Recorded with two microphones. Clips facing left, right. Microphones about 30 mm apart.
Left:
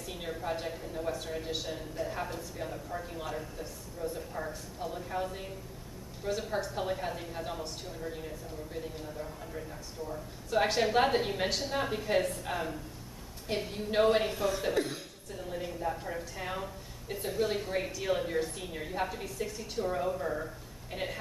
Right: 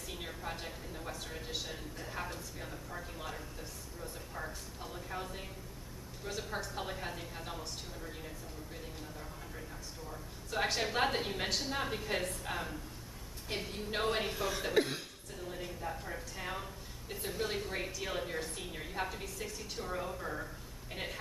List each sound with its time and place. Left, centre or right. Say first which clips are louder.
0.0 s speech: left 5 dB; centre
14.7 s speech: even; centre
15.4 s speech: left 6 dB; centre